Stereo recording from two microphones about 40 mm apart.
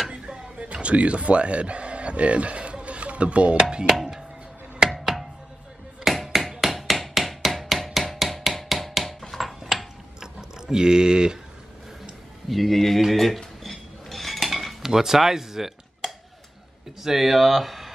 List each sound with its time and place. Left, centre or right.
0.1 s speech: right
4.9 s music: centre
6.1 s hammer: centre
8.6 s music: centre
10.2 s a sound: centre
12.4 s speech: centre
13.7 s cutlery: centre
14.9 s speech: centre
16.0 s a sound: centre
17.0 s speech: centre